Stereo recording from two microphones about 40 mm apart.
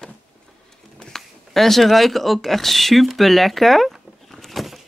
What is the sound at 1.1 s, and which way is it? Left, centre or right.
Speech, centre.